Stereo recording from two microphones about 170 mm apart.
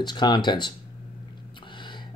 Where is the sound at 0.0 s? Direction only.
25° left (ahead or behind).